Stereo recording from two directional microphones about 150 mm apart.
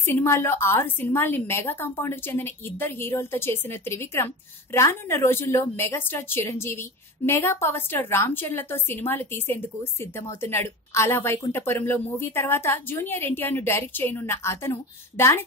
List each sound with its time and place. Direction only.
0.0 s a woman's voice: 15° left (ahead or behind)